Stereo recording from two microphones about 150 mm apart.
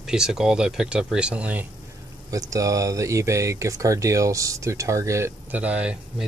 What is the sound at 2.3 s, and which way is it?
Speech, 20° right (ahead or behind).